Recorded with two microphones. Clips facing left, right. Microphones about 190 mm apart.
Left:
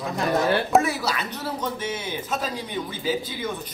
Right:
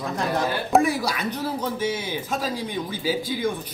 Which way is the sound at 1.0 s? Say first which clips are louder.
Right 2 dB; 10° right (ahead or behind).